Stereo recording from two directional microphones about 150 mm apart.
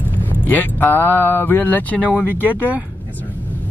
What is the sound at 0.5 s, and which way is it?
Speech, 10° left (ahead or behind).